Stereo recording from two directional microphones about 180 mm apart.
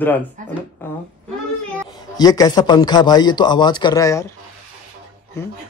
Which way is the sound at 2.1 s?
20° left (ahead or behind).